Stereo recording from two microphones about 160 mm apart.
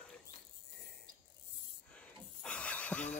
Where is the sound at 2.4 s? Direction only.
5° left (ahead or behind).